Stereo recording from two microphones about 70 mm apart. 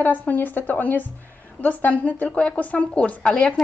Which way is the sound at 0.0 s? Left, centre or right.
Left.